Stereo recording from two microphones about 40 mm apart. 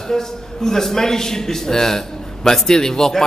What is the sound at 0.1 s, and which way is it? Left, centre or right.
A man's voice, centre.